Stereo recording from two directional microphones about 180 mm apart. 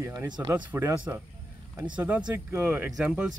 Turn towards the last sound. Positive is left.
turn(degrees=-5)  # may be behind; listen again after turning